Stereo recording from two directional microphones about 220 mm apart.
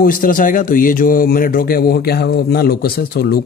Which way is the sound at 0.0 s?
40° left (ahead or behind).